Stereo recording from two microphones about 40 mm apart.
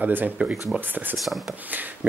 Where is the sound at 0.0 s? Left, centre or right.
Right.